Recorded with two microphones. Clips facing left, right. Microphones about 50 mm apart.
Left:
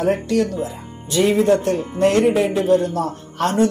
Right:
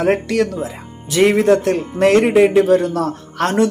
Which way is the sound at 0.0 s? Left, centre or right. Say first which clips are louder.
Right 2 dB; right.